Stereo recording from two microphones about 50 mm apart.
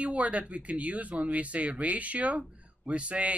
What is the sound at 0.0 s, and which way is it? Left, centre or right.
Speech, right.